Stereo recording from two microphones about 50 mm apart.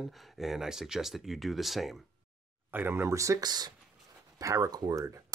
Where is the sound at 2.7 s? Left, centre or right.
Right.